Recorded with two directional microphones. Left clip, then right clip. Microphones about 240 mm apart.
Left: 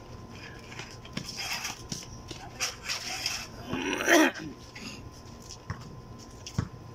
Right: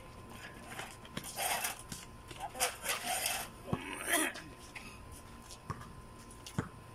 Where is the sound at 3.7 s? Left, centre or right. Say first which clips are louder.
Left 12 dB; left.